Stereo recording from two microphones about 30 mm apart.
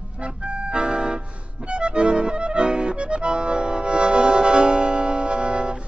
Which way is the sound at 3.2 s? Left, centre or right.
Right.